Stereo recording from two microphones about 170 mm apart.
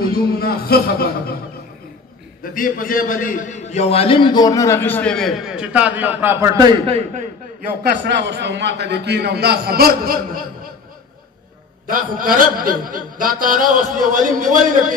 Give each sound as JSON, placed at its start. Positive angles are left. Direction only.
{"t": 0.0, "sound": "a man's voice", "side_deg": 65}
{"t": 2.5, "sound": "a man's voice", "side_deg": 55}
{"t": 6.9, "sound": "a man's voice", "side_deg": -40}
{"t": 8.1, "sound": "a man's voice", "side_deg": -90}
{"t": 11.9, "sound": "a man's voice", "side_deg": -55}